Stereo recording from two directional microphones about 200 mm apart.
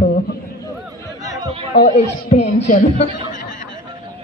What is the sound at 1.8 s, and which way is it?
Speech, 35° left (ahead or behind).